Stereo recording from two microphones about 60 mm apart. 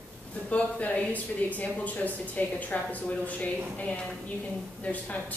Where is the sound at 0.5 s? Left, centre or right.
Left.